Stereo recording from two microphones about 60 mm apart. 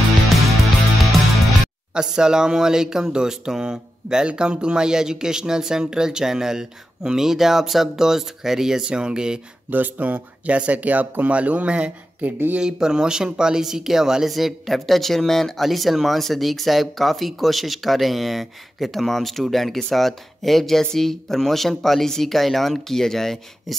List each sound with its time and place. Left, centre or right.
2.0 s speech: centre
9.7 s speech: right
12.2 s speech: right
12.5 s speech: centre